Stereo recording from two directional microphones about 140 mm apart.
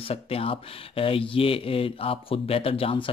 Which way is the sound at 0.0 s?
45° left (ahead or behind).